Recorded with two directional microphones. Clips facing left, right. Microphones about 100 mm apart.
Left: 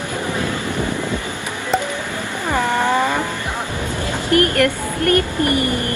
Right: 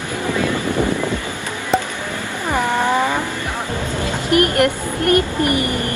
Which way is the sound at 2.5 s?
15° right (ahead or behind).